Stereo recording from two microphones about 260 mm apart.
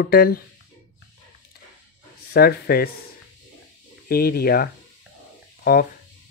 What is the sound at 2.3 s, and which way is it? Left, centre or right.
Speech, left.